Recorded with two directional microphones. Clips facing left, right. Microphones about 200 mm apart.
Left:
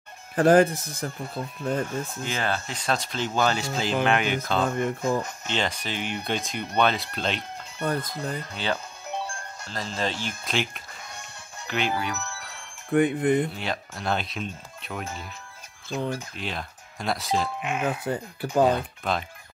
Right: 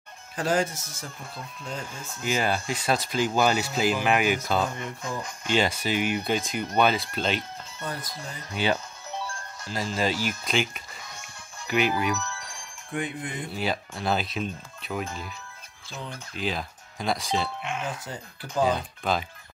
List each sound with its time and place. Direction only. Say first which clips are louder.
0.4 s speech: left 8 dB; 55° left (ahead or behind)
2.2 s speech: right 7 dB; 10° right (ahead or behind)
4.6 s speech: left 8 dB; 55° left (ahead or behind)
5.5 s speech: right 5 dB; 10° right (ahead or behind)
7.8 s speech: left 8 dB; 55° left (ahead or behind)
9.7 s speech: right 3 dB; 10° right (ahead or behind)
12.9 s speech: left 11 dB; 60° left (ahead or behind)
13.6 s speech: right 3 dB; 5° right (ahead or behind)
16.3 s speech: right 3 dB; centre (ahead or behind)
17.8 s speech: left 7 dB; 60° left (ahead or behind)
19.1 s speech: right 1 dB; centre (ahead or behind)